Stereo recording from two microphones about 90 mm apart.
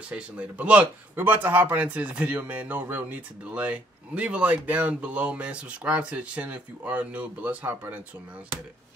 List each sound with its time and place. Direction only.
0.1 s speech: 15° right (ahead or behind)